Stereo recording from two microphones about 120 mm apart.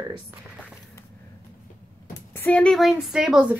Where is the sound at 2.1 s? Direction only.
15° left (ahead or behind).